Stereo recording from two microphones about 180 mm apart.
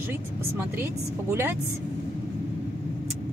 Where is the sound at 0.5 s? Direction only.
10° right (ahead or behind).